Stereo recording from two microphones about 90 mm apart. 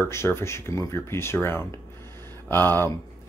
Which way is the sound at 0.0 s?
25° left (ahead or behind).